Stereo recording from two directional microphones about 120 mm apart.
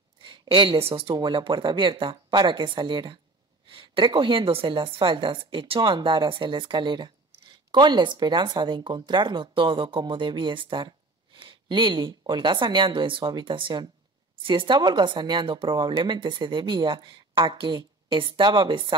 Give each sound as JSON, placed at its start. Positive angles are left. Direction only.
{"t": 0.2, "sound": "speech", "side_deg": -40}
{"t": 1.1, "sound": "a woman's voice", "side_deg": -40}